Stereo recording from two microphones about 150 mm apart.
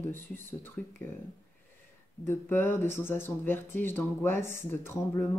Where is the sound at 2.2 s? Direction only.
15° left (ahead or behind).